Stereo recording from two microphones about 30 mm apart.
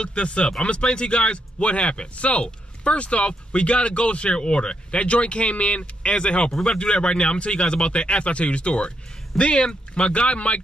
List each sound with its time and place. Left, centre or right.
0.0 s speech: left
4.3 s speech: left